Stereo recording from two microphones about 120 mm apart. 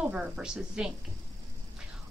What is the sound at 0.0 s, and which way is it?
Speech, 10° right (ahead or behind).